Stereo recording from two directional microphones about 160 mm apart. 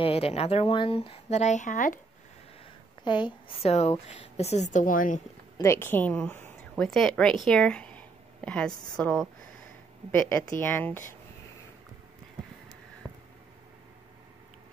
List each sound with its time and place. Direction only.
0.0 s speech: 40° left (ahead or behind)
3.0 s a woman's voice: 30° left (ahead or behind); by 5.2 s 55° left (ahead or behind)
5.6 s a woman's voice: 15° left (ahead or behind)
7.4 s a sound: 5° left (ahead or behind)
8.9 s a woman's voice: 5° left (ahead or behind)